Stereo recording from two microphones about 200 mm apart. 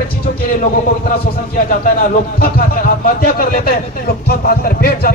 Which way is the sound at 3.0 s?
45° left (ahead or behind).